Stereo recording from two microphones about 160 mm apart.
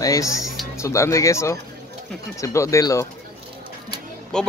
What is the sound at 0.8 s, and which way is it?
Speech, 20° left (ahead or behind).